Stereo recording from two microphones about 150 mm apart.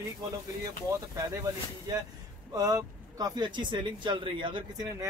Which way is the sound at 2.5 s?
25° right (ahead or behind).